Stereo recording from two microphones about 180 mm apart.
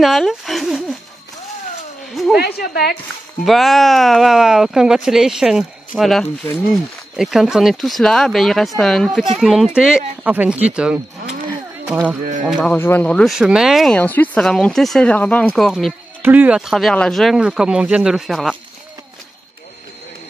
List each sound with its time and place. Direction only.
0.0 s speech: centre (ahead or behind)
2.3 s a woman's voice: 60° left (ahead or behind)
3.4 s speech: centre (ahead or behind)
12.4 s speech: 5° left (ahead or behind)
16.2 s speech: 10° right (ahead or behind)